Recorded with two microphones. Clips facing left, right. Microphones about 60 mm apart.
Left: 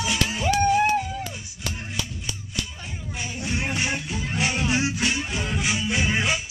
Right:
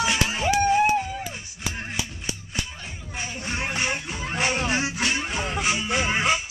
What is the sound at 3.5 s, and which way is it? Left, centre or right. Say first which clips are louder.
Music: even; right.